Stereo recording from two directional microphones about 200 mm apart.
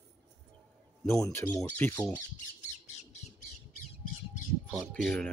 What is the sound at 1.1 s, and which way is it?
Speech, 15° left (ahead or behind).